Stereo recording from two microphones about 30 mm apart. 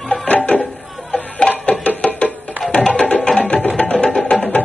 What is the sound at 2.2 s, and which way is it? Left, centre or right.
Music, left.